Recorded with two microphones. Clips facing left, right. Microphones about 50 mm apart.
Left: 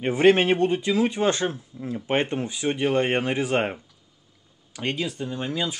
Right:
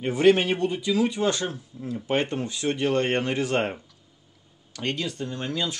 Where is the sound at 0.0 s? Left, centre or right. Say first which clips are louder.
Left 1 dB; left.